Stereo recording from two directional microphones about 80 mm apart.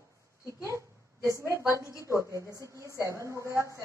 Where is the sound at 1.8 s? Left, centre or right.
Left.